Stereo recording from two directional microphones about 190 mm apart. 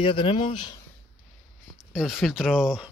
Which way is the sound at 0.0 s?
25° left (ahead or behind).